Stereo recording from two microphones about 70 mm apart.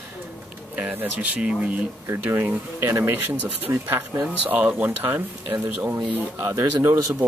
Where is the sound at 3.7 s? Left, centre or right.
Right.